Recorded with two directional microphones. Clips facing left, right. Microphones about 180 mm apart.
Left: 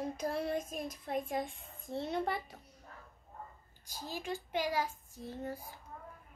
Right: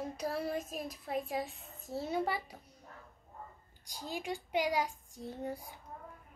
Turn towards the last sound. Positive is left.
turn(degrees=-15)  # may be behind; listen again after turning